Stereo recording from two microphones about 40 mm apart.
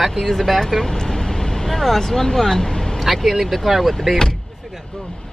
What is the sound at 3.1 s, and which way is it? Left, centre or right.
Speech, centre.